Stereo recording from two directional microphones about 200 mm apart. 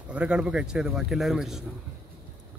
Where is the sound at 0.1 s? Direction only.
5° right (ahead or behind).